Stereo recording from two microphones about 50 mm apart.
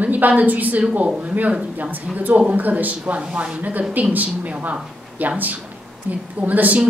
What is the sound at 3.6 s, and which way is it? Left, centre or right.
A woman's voice, right.